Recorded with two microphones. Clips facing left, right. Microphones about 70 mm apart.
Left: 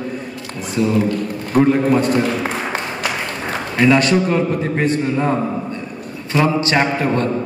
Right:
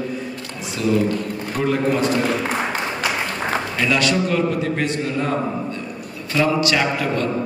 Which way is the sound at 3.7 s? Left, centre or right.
Left.